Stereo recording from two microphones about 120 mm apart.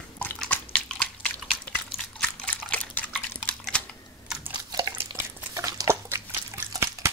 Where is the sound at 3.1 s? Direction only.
5° left (ahead or behind).